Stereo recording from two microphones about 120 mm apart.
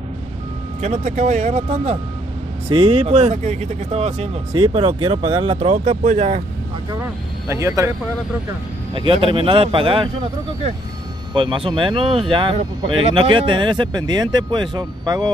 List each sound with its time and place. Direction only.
0.7 s speech: 70° right (ahead or behind)
2.7 s speech: 50° right (ahead or behind)
4.7 s speech: 50° right (ahead or behind); by 6.4 s 70° right (ahead or behind)
7.0 s speech: 25° right (ahead or behind)
8.9 s speech: 45° right (ahead or behind)
11.3 s speech: 45° right (ahead or behind)